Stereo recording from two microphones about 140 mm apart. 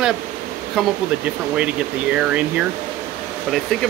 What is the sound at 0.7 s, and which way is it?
Speech, 10° right (ahead or behind).